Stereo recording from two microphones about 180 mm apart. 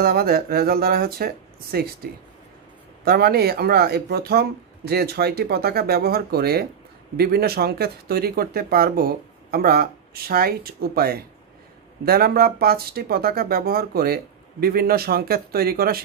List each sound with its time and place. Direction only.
0.0 s speech: 55° right (ahead or behind)
3.1 s speech: 60° right (ahead or behind)